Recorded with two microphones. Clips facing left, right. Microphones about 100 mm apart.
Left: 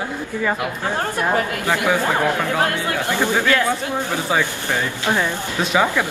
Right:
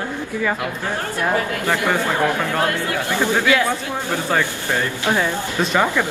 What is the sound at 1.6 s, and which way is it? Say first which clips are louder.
Speech: left 1 dB; 15° left (ahead or behind).